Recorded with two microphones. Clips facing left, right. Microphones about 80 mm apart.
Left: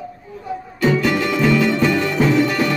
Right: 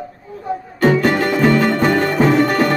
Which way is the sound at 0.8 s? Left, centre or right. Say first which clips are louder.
Right 3 dB; right.